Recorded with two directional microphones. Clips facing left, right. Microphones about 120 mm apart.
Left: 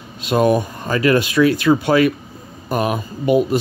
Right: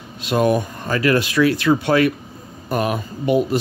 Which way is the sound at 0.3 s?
20° left (ahead or behind).